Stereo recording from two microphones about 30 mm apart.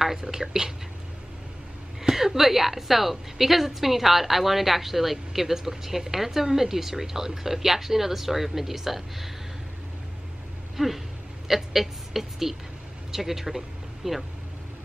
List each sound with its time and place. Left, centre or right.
0.0 s a woman's voice: centre
2.0 s a woman's voice: centre
10.8 s a woman's voice: centre